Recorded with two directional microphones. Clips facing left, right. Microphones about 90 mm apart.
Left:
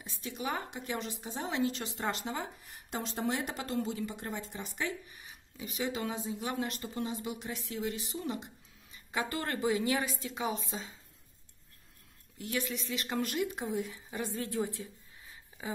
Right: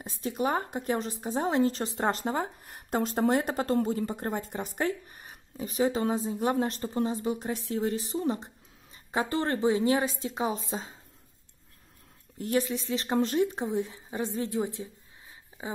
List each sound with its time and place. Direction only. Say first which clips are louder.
0.0 s speech: right 9 dB; 40° right (ahead or behind)
12.4 s a woman's voice: right 8 dB; 40° right (ahead or behind); by 14.9 s 20° right (ahead or behind)